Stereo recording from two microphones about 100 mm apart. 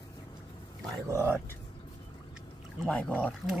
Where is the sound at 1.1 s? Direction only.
25° right (ahead or behind).